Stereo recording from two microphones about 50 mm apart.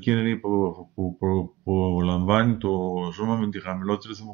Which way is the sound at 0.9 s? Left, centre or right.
Centre.